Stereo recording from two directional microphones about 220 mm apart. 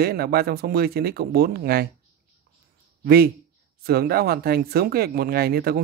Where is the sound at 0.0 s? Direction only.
45° right (ahead or behind).